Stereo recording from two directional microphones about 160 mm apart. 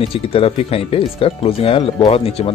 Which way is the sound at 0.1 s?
35° left (ahead or behind).